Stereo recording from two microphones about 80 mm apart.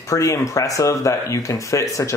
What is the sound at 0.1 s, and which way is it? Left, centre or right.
Speech, left.